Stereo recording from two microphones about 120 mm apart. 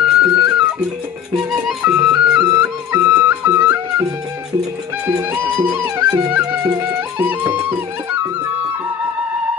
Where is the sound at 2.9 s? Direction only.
20° right (ahead or behind).